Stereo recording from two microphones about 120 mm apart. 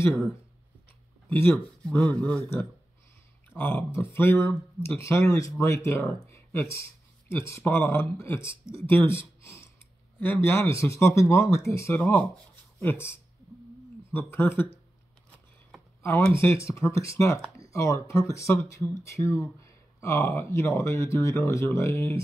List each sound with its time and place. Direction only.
0.0 s speech: 20° left (ahead or behind)
2.0 s speech: 15° left (ahead or behind)
3.5 s speech: 20° left (ahead or behind)
6.1 s a sound: 20° left (ahead or behind)
7.2 s speech: 20° left (ahead or behind)
12.0 s speech: 15° left (ahead or behind)
16.3 s speech: 25° left (ahead or behind)